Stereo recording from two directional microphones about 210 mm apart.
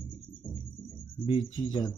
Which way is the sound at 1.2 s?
25° left (ahead or behind).